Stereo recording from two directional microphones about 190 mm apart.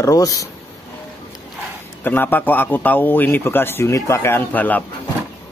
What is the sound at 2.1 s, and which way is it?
A man's voice, 10° left (ahead or behind).